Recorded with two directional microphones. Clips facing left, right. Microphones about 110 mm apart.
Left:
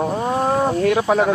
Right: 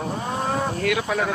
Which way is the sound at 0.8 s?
35° left (ahead or behind).